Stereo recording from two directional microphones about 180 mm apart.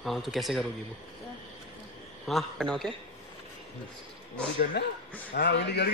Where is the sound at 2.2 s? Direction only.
5° left (ahead or behind).